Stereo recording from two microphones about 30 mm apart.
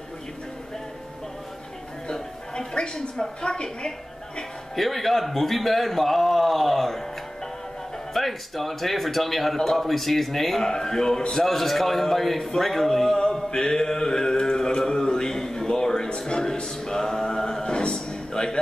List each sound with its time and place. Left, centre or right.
2.5 s a woman's voice: left
4.7 s a man's voice: centre
8.1 s a man's voice: centre
10.6 s a woman's voice: centre
11.4 s a man's voice: centre
13.5 s a woman's voice: left
14.4 s a sound: left
16.3 s music: left
17.6 s a sound: left